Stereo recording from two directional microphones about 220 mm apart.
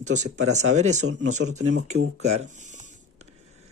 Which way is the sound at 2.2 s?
30° right (ahead or behind).